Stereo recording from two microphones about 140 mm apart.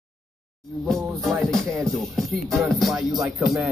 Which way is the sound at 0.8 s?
Centre (ahead or behind).